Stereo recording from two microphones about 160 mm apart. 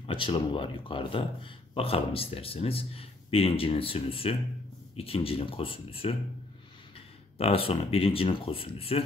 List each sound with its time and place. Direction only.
0.0 s speech: 30° left (ahead or behind)
7.3 s speech: 40° left (ahead or behind)